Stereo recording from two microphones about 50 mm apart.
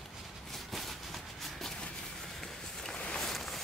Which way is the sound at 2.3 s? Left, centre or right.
Centre.